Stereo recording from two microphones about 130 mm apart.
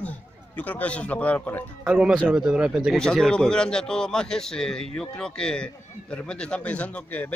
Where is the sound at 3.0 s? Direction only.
5° left (ahead or behind).